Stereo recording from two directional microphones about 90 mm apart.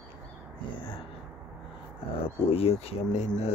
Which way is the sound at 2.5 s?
90° left.